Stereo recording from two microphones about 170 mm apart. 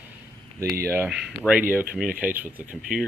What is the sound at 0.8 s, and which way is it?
Speech, 15° right (ahead or behind).